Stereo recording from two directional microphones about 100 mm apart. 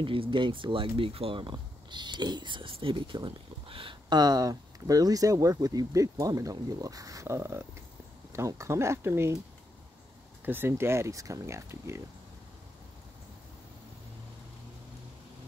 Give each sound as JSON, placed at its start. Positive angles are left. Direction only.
{"t": 0.0, "sound": "speech", "side_deg": -60}
{"t": 4.2, "sound": "speech", "side_deg": -40}
{"t": 10.4, "sound": "speech", "side_deg": -20}